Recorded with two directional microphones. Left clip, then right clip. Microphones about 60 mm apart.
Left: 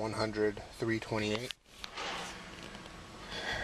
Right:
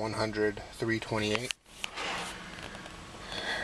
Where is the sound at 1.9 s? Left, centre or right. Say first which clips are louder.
Right 3 dB; right.